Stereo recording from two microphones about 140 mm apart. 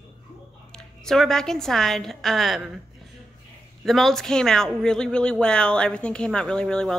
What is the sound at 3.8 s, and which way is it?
Speech, centre (ahead or behind).